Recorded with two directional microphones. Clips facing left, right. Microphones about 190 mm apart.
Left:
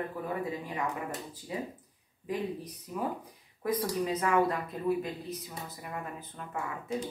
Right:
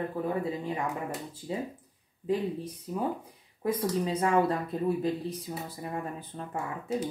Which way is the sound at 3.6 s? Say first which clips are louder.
Right 2 dB; 25° right (ahead or behind).